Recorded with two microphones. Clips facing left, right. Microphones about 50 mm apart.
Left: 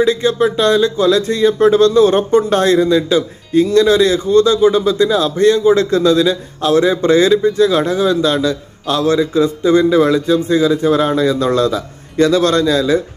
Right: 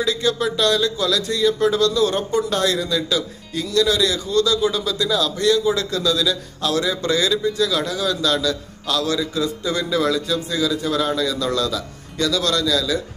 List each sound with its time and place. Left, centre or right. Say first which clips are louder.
0.0 s speech: left 7 dB; left